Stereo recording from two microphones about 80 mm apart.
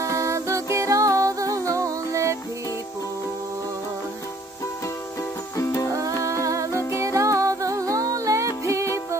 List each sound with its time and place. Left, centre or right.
0.0 s music: right
5.6 s music: left
5.9 s music: right